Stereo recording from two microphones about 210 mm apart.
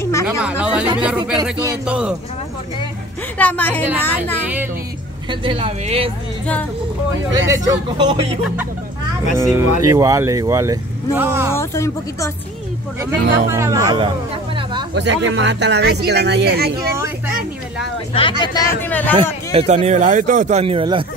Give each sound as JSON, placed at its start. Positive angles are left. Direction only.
{"t": 0.0, "sound": "a sound", "side_deg": 15}
{"t": 0.4, "sound": "speech", "side_deg": -5}
{"t": 3.3, "sound": "speech", "side_deg": 5}
{"t": 5.3, "sound": "speech", "side_deg": -25}
{"t": 7.3, "sound": "speech", "side_deg": -15}
{"t": 9.4, "sound": "speech", "side_deg": -15}
{"t": 11.5, "sound": "speech", "side_deg": 15}
{"t": 13.0, "sound": "speech", "side_deg": -15}
{"t": 15.0, "sound": "speech", "side_deg": -60}
{"t": 18.4, "sound": "speech", "side_deg": 20}
{"t": 19.5, "sound": "speech", "side_deg": -30}